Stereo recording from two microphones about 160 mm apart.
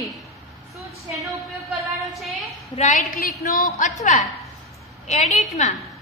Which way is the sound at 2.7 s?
50° left (ahead or behind).